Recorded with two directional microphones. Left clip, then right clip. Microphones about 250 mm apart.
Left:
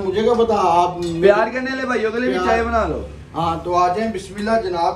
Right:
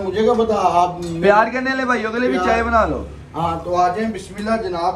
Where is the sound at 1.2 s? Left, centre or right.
Right.